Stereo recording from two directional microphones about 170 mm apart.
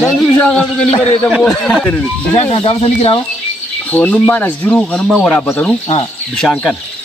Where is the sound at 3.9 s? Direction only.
10° left (ahead or behind).